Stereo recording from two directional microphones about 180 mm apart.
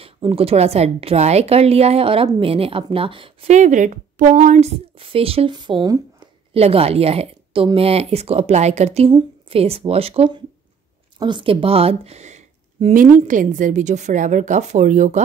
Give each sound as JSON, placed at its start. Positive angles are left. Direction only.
{"t": 0.0, "sound": "a woman's voice", "side_deg": -30}